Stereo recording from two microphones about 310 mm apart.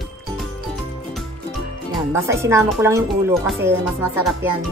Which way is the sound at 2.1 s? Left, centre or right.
Centre.